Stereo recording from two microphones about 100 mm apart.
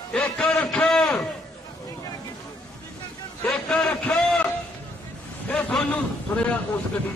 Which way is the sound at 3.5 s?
5° left (ahead or behind).